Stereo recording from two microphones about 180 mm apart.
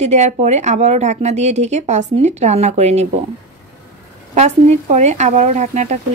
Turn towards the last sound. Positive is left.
turn(degrees=-40)  # may be behind; listen again after turning